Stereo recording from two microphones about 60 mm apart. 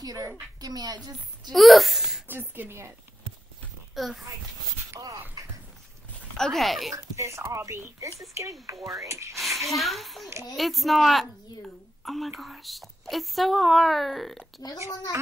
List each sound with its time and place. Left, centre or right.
0.0 s a woman's voice: right
1.5 s speech: centre
2.2 s speech: right
3.9 s a child's voice: centre
5.0 s a woman's voice: right
5.4 s a sound: right
6.3 s a woman's voice: centre
7.0 s speech: right
8.8 s speech: right
9.4 s a woman's voice: centre
14.6 s a child's voice: left